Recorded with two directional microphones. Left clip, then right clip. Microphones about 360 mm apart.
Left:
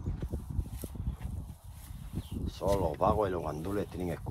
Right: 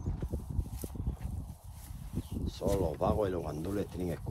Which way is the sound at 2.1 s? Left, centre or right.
Centre.